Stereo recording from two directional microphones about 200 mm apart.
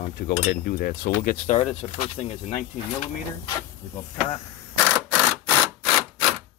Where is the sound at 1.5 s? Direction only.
30° left (ahead or behind).